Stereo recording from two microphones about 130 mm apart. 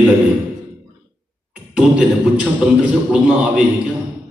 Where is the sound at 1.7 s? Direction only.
10° right (ahead or behind).